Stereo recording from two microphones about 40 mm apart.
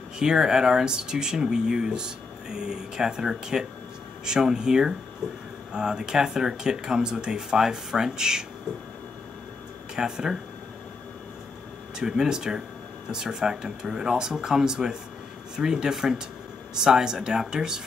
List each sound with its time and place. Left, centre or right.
0.2 s speech: centre
9.9 s speech: centre
12.0 s speech: centre